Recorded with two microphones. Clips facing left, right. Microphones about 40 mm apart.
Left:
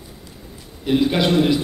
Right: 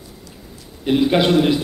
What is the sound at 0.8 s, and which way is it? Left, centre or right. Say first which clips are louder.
Speech: right 2 dB; centre.